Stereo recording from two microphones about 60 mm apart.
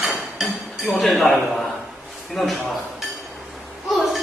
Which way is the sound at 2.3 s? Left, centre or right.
Centre.